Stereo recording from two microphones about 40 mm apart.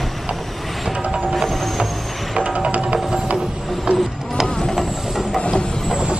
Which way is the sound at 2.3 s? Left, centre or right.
Right.